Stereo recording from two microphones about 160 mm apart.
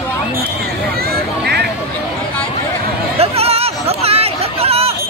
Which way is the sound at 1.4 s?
90° right.